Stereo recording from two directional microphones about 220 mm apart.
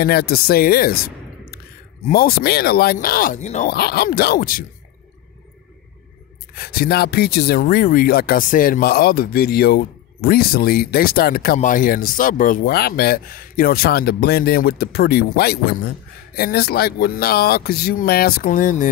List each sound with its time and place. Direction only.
0.0 s speech: 45° left (ahead or behind)
3.7 s speech: 45° left (ahead or behind)
6.5 s speech: 45° left (ahead or behind)